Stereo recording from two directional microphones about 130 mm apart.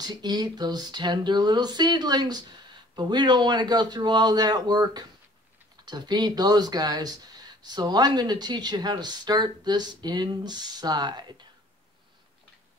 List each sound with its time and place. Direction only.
0.0 s speech: 30° right (ahead or behind)